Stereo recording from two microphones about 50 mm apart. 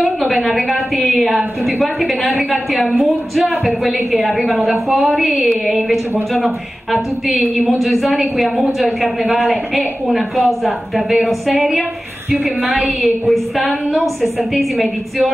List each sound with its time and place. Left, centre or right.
0.0 s a woman's voice: centre
12.8 s a woman's voice: centre
13.3 s speech: centre